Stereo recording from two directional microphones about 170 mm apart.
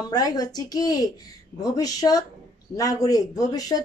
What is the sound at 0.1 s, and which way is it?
A woman's voice, 25° left (ahead or behind).